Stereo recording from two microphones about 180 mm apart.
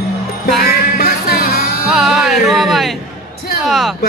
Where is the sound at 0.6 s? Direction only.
60° left (ahead or behind).